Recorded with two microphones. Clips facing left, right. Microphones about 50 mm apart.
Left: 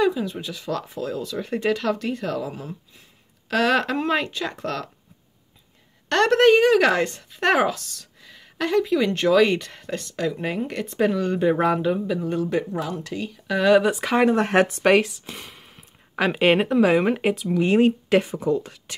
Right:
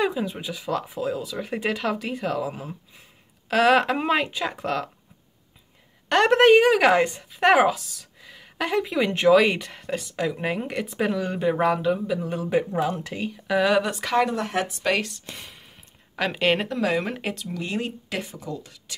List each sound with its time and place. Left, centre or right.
0.0 s a woman's voice: centre
6.0 s a woman's voice: centre
12.7 s a woman's voice: right; by 14.2 s centre
14.2 s speech: left
15.0 s speech: centre
16.2 s speech: centre; by 18.9 s left